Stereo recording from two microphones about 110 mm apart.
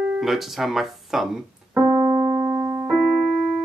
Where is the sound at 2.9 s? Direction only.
5° right (ahead or behind).